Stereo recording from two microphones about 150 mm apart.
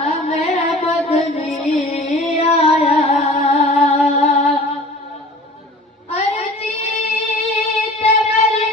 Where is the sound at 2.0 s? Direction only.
45° left (ahead or behind).